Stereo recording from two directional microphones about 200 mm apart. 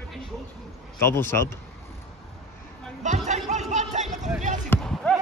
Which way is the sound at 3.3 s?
35° right (ahead or behind).